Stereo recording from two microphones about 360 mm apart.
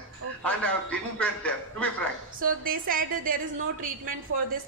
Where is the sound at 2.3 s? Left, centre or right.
Right.